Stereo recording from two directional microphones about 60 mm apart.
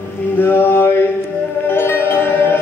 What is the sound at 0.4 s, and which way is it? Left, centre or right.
Mantra, left.